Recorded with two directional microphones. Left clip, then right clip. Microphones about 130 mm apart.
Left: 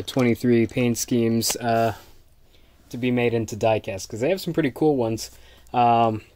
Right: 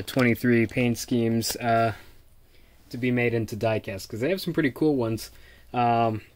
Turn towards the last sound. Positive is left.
turn(degrees=20)  # may be behind; listen again after turning